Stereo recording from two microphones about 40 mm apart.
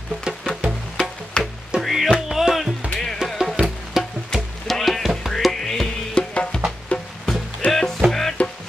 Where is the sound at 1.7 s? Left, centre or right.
Right.